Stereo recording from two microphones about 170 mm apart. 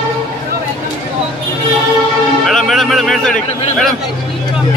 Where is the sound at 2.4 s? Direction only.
Centre (ahead or behind).